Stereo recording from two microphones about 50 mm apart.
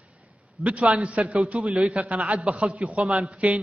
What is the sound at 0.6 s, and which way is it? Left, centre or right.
A man's voice, right.